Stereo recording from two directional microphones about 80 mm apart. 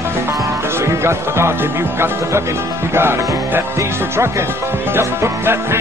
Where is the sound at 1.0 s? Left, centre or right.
Right.